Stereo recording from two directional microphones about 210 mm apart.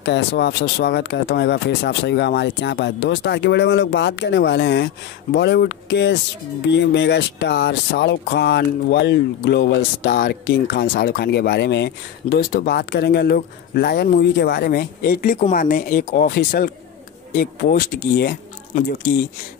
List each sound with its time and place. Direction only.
0.0 s speech: 55° left (ahead or behind)